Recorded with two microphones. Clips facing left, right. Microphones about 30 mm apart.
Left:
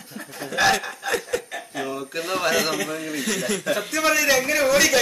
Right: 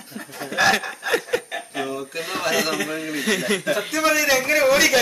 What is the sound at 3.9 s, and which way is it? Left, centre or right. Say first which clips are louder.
Speech: even; centre.